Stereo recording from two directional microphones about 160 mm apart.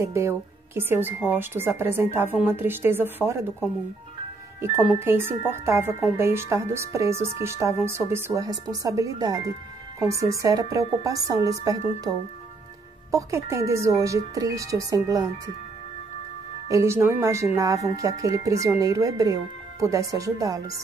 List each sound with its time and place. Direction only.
0.0 s speech: 15° right (ahead or behind)
4.9 s a woman's voice: 15° right (ahead or behind)
16.6 s speech: 20° right (ahead or behind)